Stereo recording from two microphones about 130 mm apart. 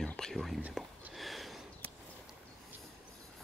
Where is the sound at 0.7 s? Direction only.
Centre (ahead or behind).